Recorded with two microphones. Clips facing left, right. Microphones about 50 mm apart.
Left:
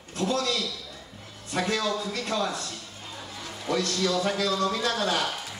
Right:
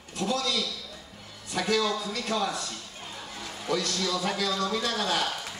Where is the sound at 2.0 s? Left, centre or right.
Left.